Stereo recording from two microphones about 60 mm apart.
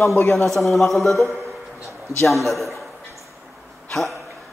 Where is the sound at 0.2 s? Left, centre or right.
Left.